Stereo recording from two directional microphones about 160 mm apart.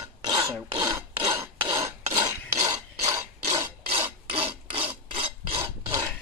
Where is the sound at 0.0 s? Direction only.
25° right (ahead or behind).